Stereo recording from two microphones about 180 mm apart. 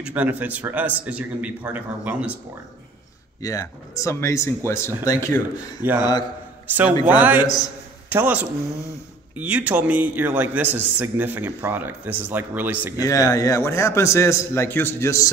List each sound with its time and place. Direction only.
0.0 s speech: 10° right (ahead or behind)
3.4 s a man's voice: 20° left (ahead or behind)
5.8 s speech: 10° right (ahead or behind)
7.1 s speech: 10° right (ahead or behind)
13.0 s a man's voice: 20° left (ahead or behind)